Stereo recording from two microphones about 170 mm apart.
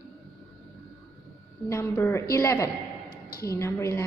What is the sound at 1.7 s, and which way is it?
A woman's voice, 15° left (ahead or behind).